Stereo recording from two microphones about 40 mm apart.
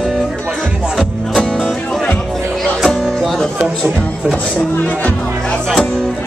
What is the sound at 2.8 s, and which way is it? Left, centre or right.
Music, centre.